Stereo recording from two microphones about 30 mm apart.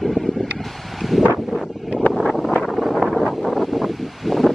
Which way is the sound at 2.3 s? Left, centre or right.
Centre.